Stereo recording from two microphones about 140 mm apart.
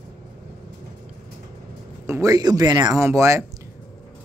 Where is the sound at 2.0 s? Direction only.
20° right (ahead or behind).